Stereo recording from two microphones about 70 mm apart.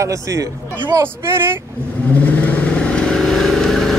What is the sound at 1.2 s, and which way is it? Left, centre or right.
Speech, right.